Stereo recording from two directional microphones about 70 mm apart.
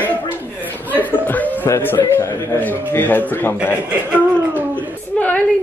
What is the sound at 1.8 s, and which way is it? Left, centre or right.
A man's voice, left.